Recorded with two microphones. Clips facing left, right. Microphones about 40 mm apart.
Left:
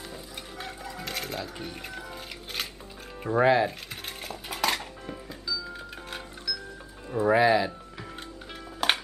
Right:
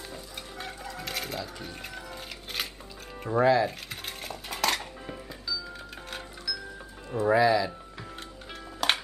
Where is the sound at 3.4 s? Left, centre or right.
Left.